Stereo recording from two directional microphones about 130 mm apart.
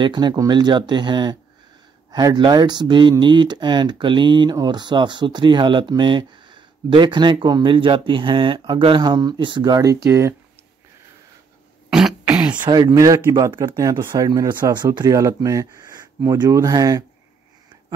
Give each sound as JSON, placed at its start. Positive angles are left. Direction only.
{"t": 0.0, "sound": "speech", "side_deg": -35}
{"t": 11.9, "sound": "throat clearing", "side_deg": -5}
{"t": 12.3, "sound": "a sound", "side_deg": -10}
{"t": 12.5, "sound": "speech", "side_deg": -35}